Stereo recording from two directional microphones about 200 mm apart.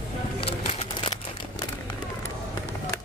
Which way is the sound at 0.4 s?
30° left (ahead or behind).